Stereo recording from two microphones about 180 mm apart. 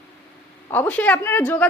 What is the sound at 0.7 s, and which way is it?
A woman's voice, 10° left (ahead or behind).